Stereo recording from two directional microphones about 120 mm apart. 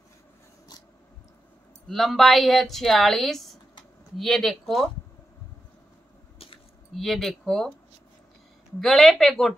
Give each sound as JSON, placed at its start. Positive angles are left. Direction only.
{"t": 1.9, "sound": "speech", "side_deg": 0}
{"t": 6.3, "sound": "a sound", "side_deg": 50}
{"t": 7.0, "sound": "speech", "side_deg": 0}
{"t": 8.8, "sound": "speech", "side_deg": 0}